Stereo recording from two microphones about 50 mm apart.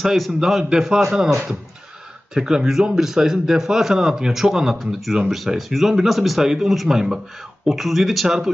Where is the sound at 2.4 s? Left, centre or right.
Centre.